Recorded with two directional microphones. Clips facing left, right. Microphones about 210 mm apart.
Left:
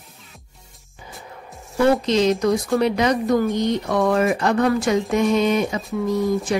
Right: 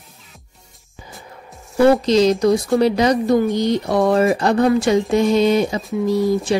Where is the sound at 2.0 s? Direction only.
35° right (ahead or behind).